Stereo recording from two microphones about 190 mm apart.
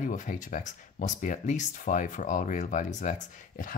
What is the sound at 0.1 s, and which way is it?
Speech, 40° left (ahead or behind).